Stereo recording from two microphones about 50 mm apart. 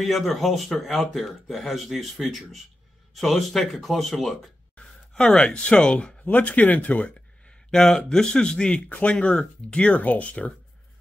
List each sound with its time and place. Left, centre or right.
0.0 s speech: centre
4.7 s speech: centre
6.2 s speech: left
7.7 s a man's voice: centre; by 10.5 s left